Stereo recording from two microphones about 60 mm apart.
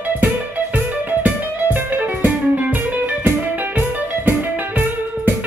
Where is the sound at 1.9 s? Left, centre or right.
Right.